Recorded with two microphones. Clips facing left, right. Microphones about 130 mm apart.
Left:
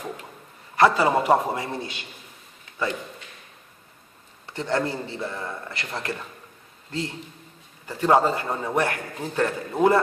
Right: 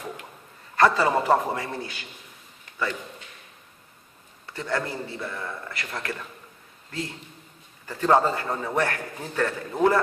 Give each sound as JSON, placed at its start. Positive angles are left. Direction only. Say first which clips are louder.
{"t": 0.7, "sound": "a man's voice", "louder": "left 2 dB", "side_deg": 15}
{"t": 4.6, "sound": "a man's voice", "louder": "left 3 dB", "side_deg": 25}
{"t": 7.9, "sound": "a man's voice", "louder": "left 1 dB", "side_deg": 15}